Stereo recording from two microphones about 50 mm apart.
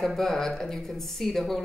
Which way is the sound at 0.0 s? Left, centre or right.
Centre.